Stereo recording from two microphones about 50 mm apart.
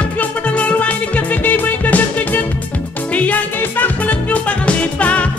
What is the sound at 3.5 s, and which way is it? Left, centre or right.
Music, left.